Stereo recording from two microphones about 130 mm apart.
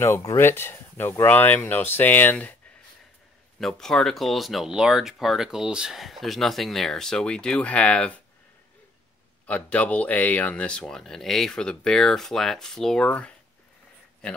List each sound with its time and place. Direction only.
0.0 s speech: 20° left (ahead or behind)
3.5 s speech: 5° left (ahead or behind)
9.5 s speech: 10° left (ahead or behind)